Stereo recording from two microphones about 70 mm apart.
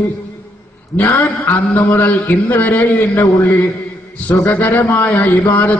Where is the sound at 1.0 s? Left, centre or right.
Left.